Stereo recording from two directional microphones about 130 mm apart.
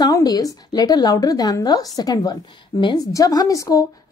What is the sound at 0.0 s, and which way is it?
A woman's voice, 30° left (ahead or behind).